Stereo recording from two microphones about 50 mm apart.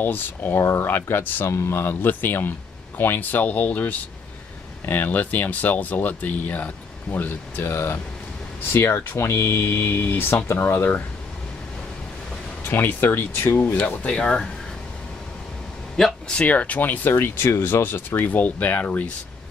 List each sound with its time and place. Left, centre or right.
0.0 s speech: left
0.6 s speech: left
0.8 s speech: left
1.5 s speech: left
7.7 s speech: left
12.6 s speech: left
13.7 s speech: left
16.0 s speech: centre
16.4 s speech: left
17.0 s speech: left